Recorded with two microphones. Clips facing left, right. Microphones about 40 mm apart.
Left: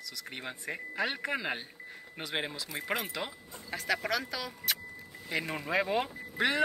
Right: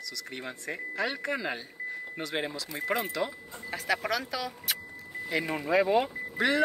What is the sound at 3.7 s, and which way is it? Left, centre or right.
Speech, centre.